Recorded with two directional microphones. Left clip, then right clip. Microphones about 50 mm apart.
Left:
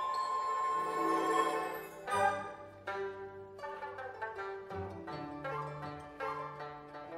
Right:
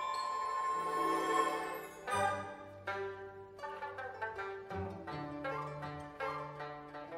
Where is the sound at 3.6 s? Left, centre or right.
Left.